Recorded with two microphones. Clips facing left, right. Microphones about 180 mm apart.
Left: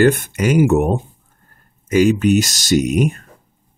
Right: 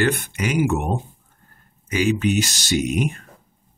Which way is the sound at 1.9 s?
45° left (ahead or behind).